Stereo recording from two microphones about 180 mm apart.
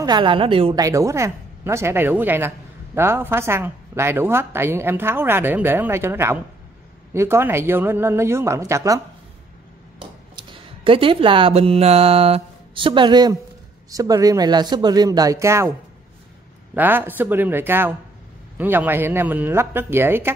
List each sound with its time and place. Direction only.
0.0 s speech: 25° right (ahead or behind)
0.8 s speech: 15° right (ahead or behind)
10.3 s speech: 30° right (ahead or behind)
16.7 s speech: 10° right (ahead or behind)